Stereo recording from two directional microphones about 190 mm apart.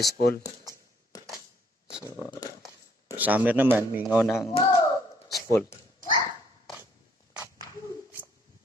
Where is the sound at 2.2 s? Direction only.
20° left (ahead or behind).